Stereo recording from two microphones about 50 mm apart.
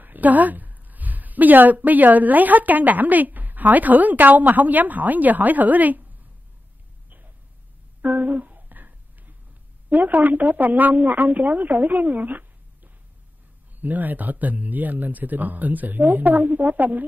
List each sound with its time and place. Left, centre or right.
0.0 s a woman's voice: right
8.0 s a sound: right
9.8 s speech: right